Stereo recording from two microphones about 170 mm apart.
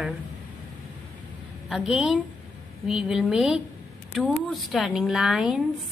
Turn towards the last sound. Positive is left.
turn(degrees=0)  # may be behind; listen again after turning